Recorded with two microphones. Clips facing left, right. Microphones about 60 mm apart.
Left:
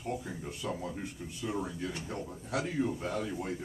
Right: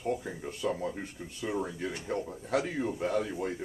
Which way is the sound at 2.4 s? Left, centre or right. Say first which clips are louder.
Right 1 dB; right.